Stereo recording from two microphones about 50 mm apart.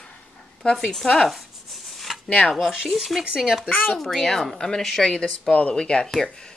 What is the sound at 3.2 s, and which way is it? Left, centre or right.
Speech, centre.